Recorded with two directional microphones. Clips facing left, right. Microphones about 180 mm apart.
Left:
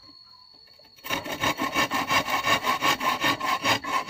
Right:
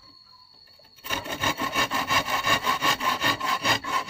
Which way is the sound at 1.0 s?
10° left (ahead or behind).